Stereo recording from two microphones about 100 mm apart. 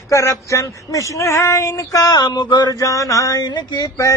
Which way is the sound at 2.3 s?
50° left (ahead or behind).